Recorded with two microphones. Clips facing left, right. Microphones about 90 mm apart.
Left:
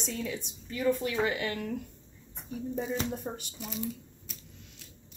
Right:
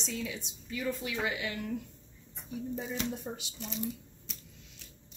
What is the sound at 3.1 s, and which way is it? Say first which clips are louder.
Speech: left 2 dB; 45° left (ahead or behind).